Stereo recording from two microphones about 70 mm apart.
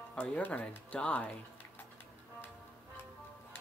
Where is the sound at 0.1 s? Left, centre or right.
Centre.